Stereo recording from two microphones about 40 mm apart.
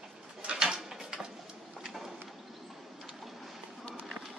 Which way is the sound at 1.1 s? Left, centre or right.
Centre.